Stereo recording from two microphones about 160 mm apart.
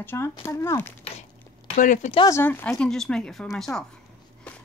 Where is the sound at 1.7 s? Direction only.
55° left (ahead or behind).